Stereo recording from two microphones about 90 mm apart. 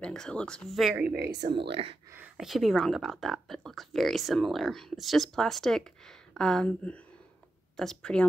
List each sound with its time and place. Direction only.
0.0 s speech: 10° left (ahead or behind)
1.5 s speech: 80° right
2.3 s speech: centre (ahead or behind)